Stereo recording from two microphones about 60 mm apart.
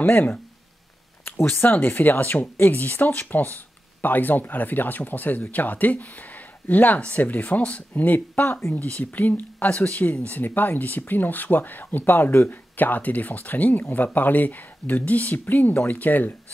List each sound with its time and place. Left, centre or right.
0.0 s speech: left
8.7 s speech: left